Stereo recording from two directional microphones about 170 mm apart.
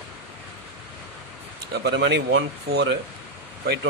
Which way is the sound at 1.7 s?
85° right.